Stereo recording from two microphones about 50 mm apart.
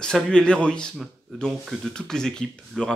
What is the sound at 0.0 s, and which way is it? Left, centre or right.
Speech, centre.